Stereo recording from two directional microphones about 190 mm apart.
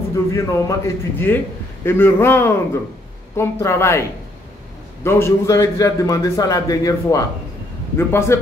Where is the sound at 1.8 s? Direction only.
10° left (ahead or behind).